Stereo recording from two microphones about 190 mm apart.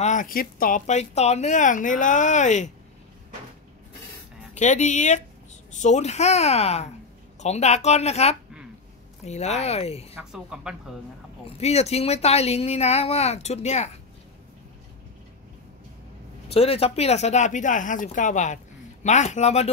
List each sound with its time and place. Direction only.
0.0 s speech: 40° left (ahead or behind)
4.6 s speech: 40° left (ahead or behind)
10.3 s speech: 5° right (ahead or behind)
11.4 s speech: 35° left (ahead or behind)
16.4 s speech: 30° left (ahead or behind)